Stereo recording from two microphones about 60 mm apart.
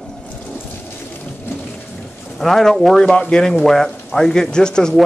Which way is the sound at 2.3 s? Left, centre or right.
Centre.